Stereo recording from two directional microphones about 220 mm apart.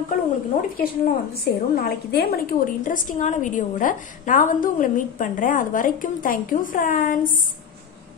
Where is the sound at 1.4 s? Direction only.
45° left (ahead or behind).